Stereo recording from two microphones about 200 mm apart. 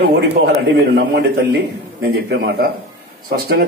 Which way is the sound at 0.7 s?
55° right (ahead or behind).